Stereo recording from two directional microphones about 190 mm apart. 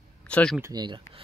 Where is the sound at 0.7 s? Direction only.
25° right (ahead or behind).